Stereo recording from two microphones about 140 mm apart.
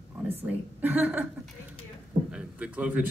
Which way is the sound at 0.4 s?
15° right (ahead or behind).